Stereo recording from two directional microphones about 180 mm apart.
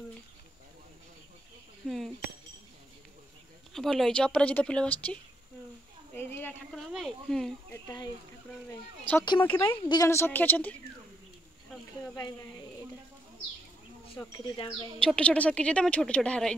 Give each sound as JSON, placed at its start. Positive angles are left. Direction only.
{"t": 1.9, "sound": "chink", "side_deg": 0}
{"t": 3.7, "sound": "speech", "side_deg": 0}
{"t": 6.3, "sound": "speech", "side_deg": 5}
{"t": 9.2, "sound": "speech", "side_deg": 25}
{"t": 9.5, "sound": "a woman's voice", "side_deg": 15}
{"t": 14.4, "sound": "speech", "side_deg": 25}
{"t": 15.0, "sound": "a woman's voice", "side_deg": 5}